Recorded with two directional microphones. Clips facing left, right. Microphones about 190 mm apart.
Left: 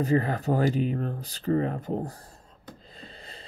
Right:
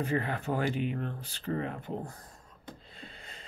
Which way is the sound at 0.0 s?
40° left (ahead or behind).